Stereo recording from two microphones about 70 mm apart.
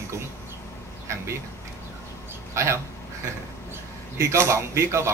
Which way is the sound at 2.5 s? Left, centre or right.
Right.